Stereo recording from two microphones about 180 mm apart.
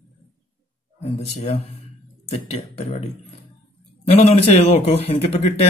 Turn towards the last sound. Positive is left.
turn(degrees=35)  # may be behind; listen again after turning